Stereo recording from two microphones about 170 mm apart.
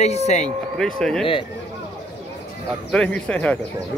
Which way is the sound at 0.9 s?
Centre (ahead or behind).